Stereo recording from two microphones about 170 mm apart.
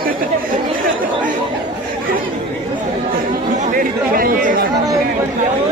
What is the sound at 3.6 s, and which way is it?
Chatter, 55° right (ahead or behind).